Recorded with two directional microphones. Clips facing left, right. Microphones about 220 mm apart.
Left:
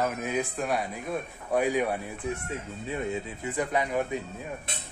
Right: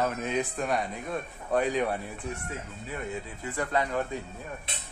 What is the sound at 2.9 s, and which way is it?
Speech, 20° left (ahead or behind).